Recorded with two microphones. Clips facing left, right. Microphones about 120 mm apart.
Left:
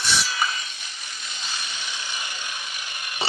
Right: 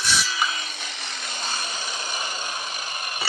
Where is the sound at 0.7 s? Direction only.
80° right.